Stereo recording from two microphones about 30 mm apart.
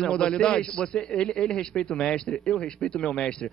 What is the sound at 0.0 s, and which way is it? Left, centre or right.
A man's voice, left.